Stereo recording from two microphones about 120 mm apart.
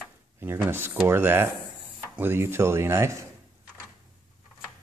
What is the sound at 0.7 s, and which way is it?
Speech, 20° right (ahead or behind).